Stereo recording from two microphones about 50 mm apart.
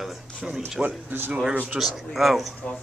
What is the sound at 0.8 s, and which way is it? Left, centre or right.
Speech, right.